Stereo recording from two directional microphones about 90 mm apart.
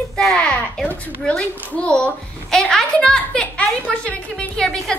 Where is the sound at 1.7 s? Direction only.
10° left (ahead or behind).